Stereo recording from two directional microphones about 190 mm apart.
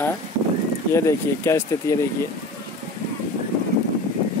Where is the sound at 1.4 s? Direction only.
15° left (ahead or behind).